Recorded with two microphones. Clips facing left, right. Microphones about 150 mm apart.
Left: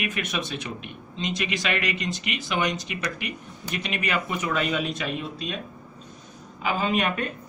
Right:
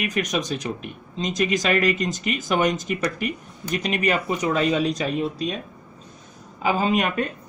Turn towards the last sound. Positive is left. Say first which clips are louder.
# right 3 dB
turn(degrees=-35)  # may be behind; listen again after turning